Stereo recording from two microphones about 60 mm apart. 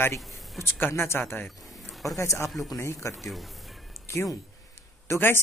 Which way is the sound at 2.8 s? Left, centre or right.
Left.